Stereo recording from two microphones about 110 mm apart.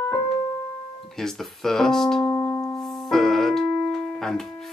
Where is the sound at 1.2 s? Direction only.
5° left (ahead or behind).